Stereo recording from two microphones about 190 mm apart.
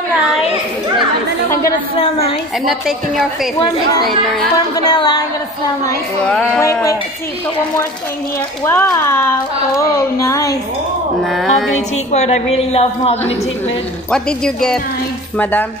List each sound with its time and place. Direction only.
2.0 s a woman's voice: 30° left (ahead or behind)
3.5 s music: 25° left (ahead or behind)
6.2 s speech: 5° left (ahead or behind)
6.6 s a woman's voice: 15° left (ahead or behind)
8.6 s a woman's voice: 15° left (ahead or behind)
11.3 s speech: centre (ahead or behind)
12.1 s a woman's voice: 35° left (ahead or behind)
14.1 s speech: 5° left (ahead or behind)